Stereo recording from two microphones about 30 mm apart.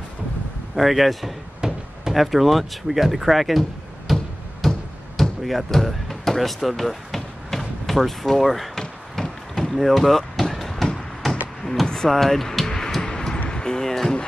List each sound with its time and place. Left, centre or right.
0.7 s speech: centre
1.6 s a sound: right
2.1 s speech: centre
4.1 s music: centre
4.6 s music: centre
5.4 s speech: centre
5.9 s a sound: centre
8.7 s a sound: centre
11.6 s music: centre
12.1 s speech: centre
12.6 s music: left
13.0 s a sound: left
13.5 s basketball bounce: left